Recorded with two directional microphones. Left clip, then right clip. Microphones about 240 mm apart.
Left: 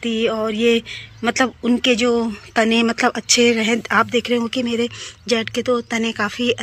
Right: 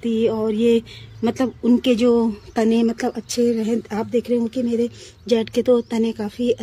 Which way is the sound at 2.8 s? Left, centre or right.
Left.